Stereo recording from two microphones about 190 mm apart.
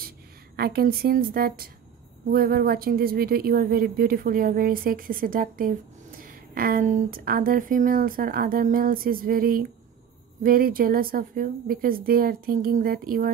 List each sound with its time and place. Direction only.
0.6 s speech: 55° right (ahead or behind)